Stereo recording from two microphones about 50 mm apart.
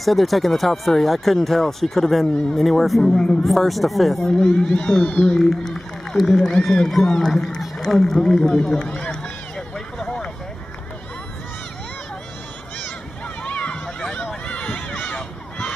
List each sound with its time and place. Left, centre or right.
0.0 s speech: centre
4.4 s speech: centre
5.4 s speech: centre
7.1 s run: centre
13.4 s run: left
13.8 s run: centre
14.1 s run: left
15.0 s a sound: centre